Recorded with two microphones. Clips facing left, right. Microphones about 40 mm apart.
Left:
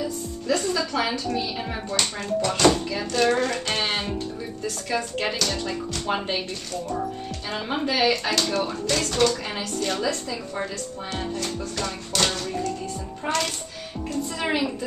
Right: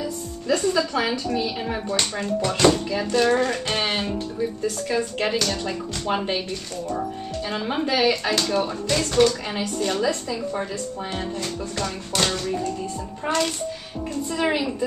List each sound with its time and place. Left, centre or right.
0.6 s speech: centre
11.7 s speech: centre
12.2 s speech: centre